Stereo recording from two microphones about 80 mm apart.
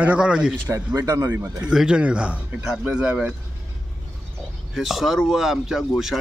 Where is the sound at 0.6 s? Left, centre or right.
Right.